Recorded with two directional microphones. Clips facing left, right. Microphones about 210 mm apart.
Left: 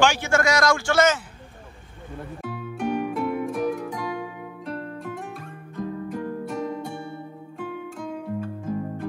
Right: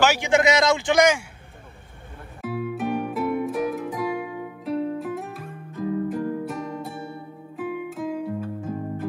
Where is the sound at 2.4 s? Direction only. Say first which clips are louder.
Right 5 dB; 5° right (ahead or behind).